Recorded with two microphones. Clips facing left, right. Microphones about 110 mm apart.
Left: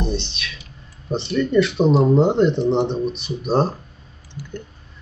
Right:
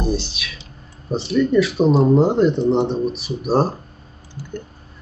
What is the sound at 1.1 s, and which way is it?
Speech, 5° right (ahead or behind).